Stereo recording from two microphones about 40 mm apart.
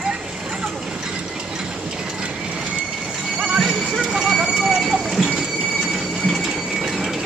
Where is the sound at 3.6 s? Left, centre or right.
Centre.